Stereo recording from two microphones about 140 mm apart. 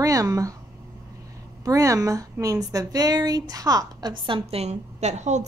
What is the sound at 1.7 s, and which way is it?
A woman's voice, 25° right (ahead or behind).